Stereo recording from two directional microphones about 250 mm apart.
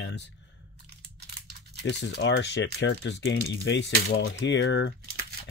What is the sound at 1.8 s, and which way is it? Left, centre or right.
Speech, left.